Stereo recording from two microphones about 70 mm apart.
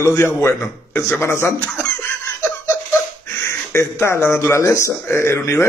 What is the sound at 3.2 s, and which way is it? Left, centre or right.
Speech, left.